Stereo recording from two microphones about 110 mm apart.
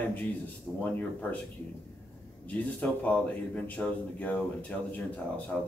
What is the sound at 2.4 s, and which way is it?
Speech, 15° left (ahead or behind).